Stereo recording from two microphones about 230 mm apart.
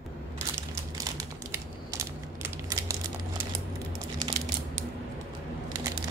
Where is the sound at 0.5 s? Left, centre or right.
Centre.